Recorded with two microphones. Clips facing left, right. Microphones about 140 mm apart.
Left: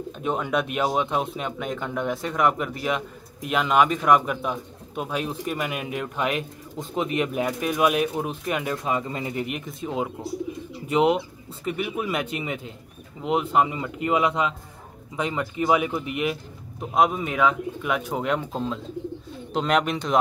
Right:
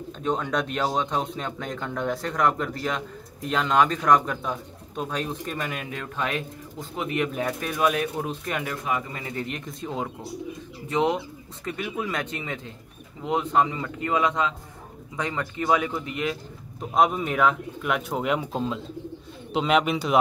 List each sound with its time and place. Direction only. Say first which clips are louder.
0.2 s speech: left 1 dB; 10° left (ahead or behind)
9.7 s speech: left 3 dB; 5° left (ahead or behind)
16.9 s speech: even; centre (ahead or behind)